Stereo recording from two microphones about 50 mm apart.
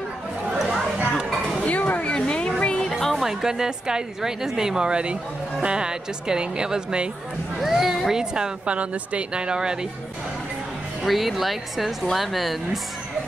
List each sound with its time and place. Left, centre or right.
0.6 s chatter: centre
1.6 s a sound: left
2.1 s a sound: centre
2.6 s music: centre
3.0 s music: centre
3.3 s speech: centre
7.5 s speech: centre
11.1 s speech: centre